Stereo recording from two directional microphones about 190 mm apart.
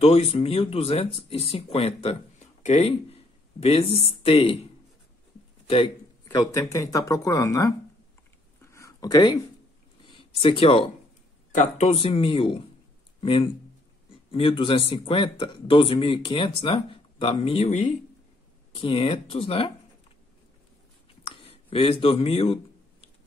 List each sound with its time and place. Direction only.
0.0 s speech: 30° left (ahead or behind)
6.2 s speech: 15° left (ahead or behind)
8.7 s a sound: 20° left (ahead or behind)
11.5 s speech: 35° left (ahead or behind)
21.2 s a sound: 30° left (ahead or behind)
22.0 s speech: 30° left (ahead or behind)